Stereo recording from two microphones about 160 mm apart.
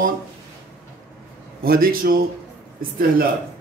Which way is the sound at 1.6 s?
65° right (ahead or behind).